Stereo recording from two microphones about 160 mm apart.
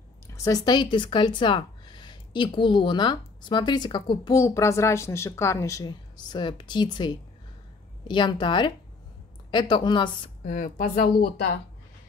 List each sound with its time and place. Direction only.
0.3 s speech: 20° left (ahead or behind)
10.4 s speech: 50° left (ahead or behind)